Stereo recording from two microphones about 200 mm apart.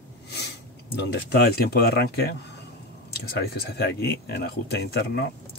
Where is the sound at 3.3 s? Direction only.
50° left (ahead or behind).